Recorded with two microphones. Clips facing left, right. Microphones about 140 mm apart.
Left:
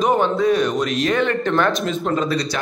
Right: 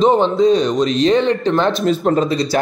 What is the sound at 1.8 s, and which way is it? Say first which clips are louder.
Speech: right 6 dB; 40° right (ahead or behind).